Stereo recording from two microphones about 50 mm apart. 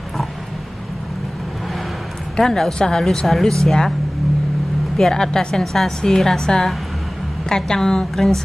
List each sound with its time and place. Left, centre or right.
2.3 s a woman's voice: centre
4.9 s a woman's voice: centre